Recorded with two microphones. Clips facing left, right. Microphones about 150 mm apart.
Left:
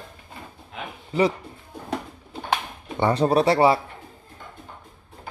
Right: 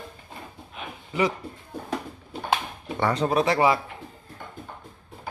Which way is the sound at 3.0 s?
30° left (ahead or behind).